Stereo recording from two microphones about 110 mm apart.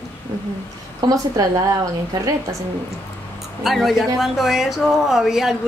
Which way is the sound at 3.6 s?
Centre (ahead or behind).